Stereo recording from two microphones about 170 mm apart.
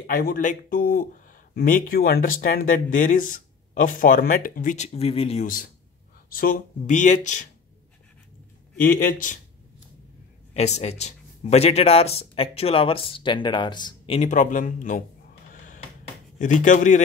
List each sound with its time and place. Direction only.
0.0 s speech: 60° left (ahead or behind); by 5.5 s 35° left (ahead or behind)
6.3 s speech: 55° left (ahead or behind)
8.8 s speech: 55° left (ahead or behind)
10.5 s speech: 40° left (ahead or behind)
16.3 s speech: 45° left (ahead or behind)